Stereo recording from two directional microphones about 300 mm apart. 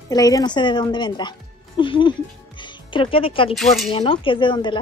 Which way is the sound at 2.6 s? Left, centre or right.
Centre.